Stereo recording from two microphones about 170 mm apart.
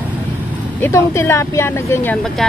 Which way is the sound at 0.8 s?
15° left (ahead or behind).